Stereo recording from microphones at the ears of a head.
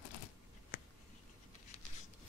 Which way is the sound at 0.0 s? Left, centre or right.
Left.